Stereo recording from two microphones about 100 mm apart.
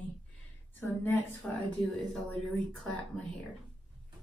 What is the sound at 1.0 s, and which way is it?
Speech, 15° left (ahead or behind).